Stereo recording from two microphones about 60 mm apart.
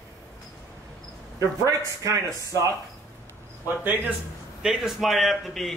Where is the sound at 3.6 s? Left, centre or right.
Right.